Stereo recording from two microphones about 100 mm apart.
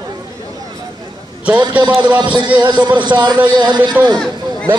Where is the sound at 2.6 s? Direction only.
50° right (ahead or behind).